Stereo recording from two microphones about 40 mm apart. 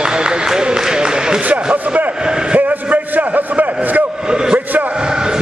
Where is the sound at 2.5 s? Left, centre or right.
Right.